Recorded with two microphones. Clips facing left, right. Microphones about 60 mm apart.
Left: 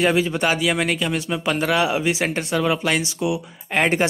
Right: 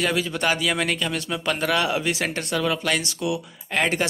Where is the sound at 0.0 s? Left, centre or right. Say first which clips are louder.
Left 4 dB; left.